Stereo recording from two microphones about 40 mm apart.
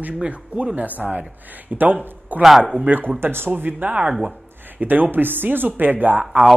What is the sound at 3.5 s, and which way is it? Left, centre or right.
Speech, right.